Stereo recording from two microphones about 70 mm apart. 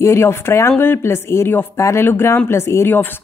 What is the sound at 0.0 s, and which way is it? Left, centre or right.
A woman's voice, left.